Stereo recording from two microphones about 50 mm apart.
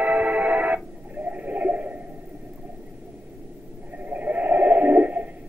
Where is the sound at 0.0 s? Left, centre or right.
Right.